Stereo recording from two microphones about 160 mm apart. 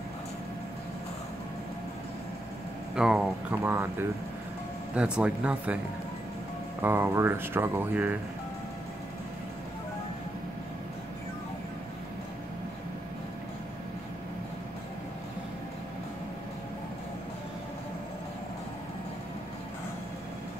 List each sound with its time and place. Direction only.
3.0 s speech: 5° right (ahead or behind)
4.9 s speech: 5° right (ahead or behind)
6.8 s speech: 15° right (ahead or behind)